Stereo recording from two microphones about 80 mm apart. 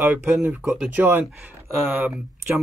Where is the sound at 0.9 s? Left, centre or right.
Right.